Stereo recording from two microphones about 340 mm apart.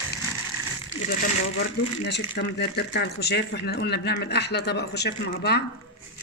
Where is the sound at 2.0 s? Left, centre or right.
Left.